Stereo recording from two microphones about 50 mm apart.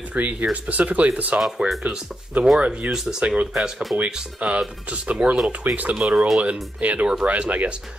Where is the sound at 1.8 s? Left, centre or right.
Centre.